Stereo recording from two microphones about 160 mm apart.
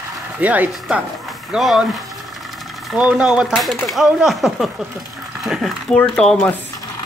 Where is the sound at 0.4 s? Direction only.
10° right (ahead or behind).